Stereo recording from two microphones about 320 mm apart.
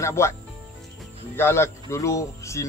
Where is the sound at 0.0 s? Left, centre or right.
Centre.